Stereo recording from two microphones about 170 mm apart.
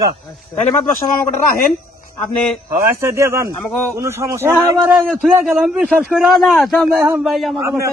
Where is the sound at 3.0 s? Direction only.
15° right (ahead or behind); by 7.5 s centre (ahead or behind).